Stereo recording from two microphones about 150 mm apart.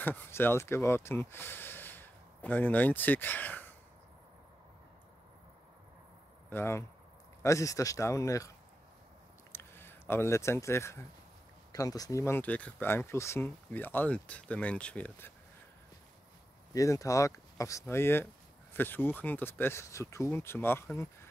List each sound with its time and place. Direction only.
0.0 s speech: 15° left (ahead or behind)
6.5 s speech: 15° left (ahead or behind)
9.5 s speech: 15° left (ahead or behind)
16.7 s speech: 20° left (ahead or behind)